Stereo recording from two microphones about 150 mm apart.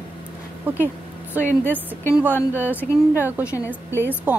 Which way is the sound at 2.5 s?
10° right (ahead or behind).